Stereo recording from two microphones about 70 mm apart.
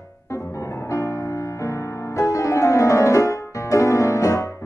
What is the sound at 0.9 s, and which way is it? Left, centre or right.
Music, left.